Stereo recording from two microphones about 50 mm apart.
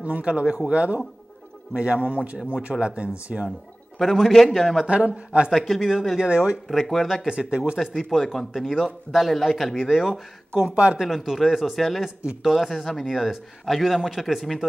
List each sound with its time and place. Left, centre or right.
0.0 s a man's voice: right
4.0 s a man's voice: centre
4.8 s speech: right
5.6 s a man's voice: centre
6.1 s speech: centre
6.7 s a man's voice: centre
7.2 s speech: centre
7.7 s a man's voice: centre
10.6 s speech: right
11.0 s a man's voice: centre